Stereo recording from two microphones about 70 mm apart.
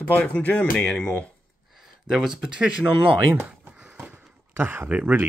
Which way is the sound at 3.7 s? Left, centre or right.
Centre.